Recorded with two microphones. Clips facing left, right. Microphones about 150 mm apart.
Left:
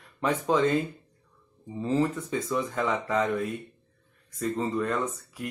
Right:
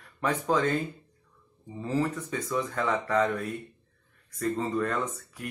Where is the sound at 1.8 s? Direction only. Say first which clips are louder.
Left 3 dB; 20° left (ahead or behind).